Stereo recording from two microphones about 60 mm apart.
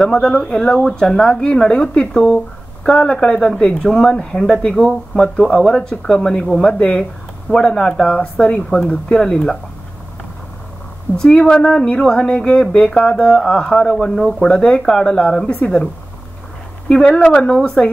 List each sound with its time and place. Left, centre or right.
0.0 s speech: centre
11.1 s speech: centre
16.9 s speech: centre